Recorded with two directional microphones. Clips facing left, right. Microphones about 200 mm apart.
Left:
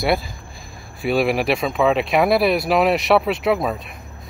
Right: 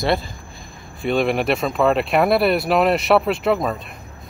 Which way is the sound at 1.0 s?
5° left (ahead or behind).